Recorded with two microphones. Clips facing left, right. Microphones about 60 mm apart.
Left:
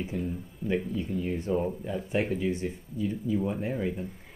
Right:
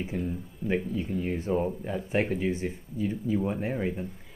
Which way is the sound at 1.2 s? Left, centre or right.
Right.